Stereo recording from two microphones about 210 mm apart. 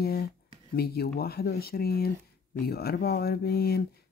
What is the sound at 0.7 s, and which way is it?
Speech, 50° left (ahead or behind).